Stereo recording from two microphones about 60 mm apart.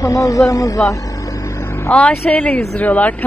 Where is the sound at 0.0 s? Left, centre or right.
Left.